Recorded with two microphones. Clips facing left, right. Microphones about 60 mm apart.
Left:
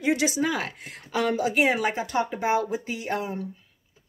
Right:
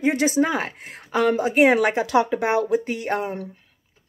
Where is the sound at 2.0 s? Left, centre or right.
Right.